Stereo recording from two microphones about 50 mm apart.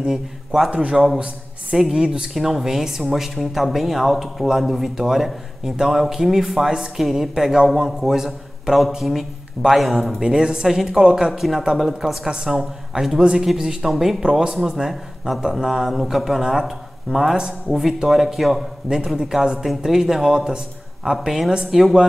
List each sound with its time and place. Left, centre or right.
0.0 s a man's voice: centre
10.2 s a man's voice: centre
13.2 s a man's voice: centre